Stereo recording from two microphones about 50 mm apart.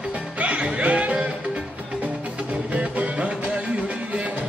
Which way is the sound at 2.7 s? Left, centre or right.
Right.